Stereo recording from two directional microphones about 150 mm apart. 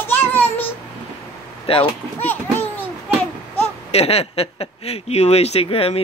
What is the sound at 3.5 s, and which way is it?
Speech, 40° left (ahead or behind).